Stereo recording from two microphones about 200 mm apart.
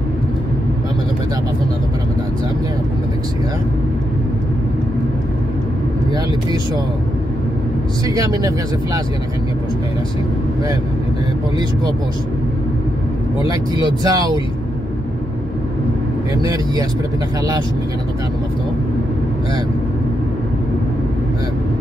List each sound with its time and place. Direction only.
8.1 s speech: 15° right (ahead or behind)
14.0 s speech: 20° right (ahead or behind)